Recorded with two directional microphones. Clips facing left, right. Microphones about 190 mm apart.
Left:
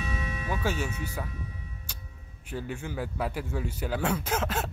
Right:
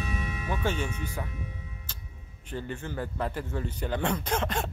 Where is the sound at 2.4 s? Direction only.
10° left (ahead or behind).